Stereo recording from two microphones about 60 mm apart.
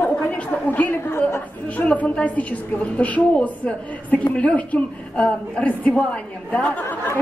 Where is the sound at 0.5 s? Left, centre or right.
Left.